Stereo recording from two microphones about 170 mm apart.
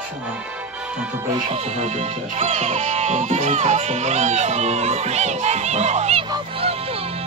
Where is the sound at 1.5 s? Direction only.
40° right (ahead or behind).